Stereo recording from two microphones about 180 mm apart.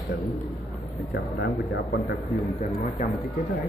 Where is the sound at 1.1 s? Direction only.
70° left (ahead or behind).